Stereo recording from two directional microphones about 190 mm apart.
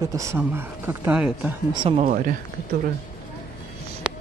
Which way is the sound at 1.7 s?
25° right (ahead or behind).